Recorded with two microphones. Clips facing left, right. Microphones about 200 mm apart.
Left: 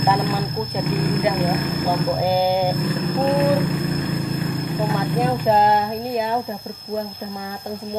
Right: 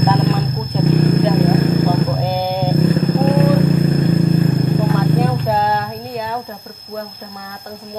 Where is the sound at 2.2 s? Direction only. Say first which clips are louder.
Left 1 dB; 10° left (ahead or behind).